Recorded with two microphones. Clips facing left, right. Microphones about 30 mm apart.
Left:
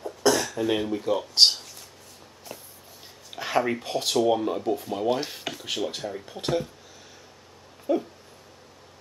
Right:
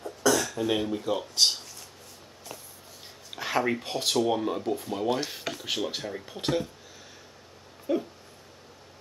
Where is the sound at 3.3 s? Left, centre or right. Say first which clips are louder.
Left 2 dB; centre.